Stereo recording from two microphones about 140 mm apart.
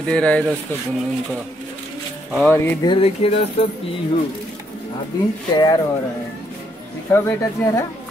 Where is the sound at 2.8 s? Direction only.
40° left (ahead or behind).